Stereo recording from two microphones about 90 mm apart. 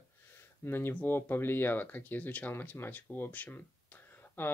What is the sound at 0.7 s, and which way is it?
Speech, 25° left (ahead or behind).